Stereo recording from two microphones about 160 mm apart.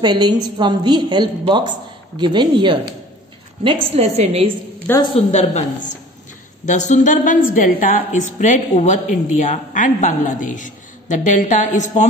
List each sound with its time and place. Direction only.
0.0 s a woman's voice: 25° right (ahead or behind)
5.1 s a woman's voice: 40° left (ahead or behind)